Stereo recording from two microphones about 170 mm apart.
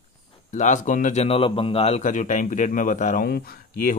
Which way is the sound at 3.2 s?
60° left (ahead or behind).